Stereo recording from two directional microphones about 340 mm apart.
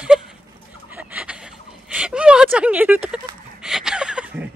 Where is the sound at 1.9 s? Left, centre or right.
Centre.